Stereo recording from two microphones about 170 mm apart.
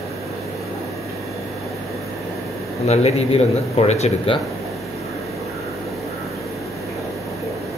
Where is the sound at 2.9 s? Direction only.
40° left (ahead or behind).